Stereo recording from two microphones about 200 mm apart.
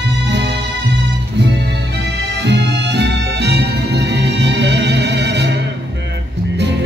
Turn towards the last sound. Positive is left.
turn(degrees=-60)  # may be behind; listen again after turning